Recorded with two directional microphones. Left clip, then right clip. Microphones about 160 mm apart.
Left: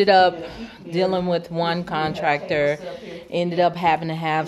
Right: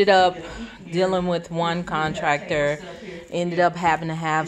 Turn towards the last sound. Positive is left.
turn(degrees=5)  # may be behind; listen again after turning